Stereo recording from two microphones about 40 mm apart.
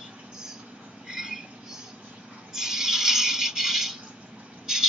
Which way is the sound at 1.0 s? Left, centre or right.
Centre.